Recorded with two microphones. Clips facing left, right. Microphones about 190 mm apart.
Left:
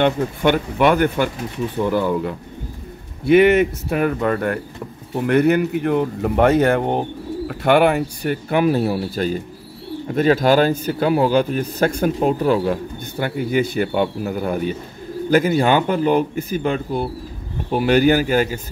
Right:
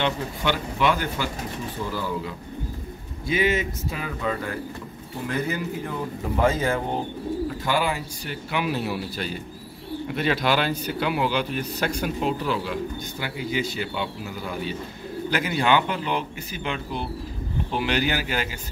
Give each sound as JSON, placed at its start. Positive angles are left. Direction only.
{"t": 0.0, "sound": "a man's voice", "side_deg": 55}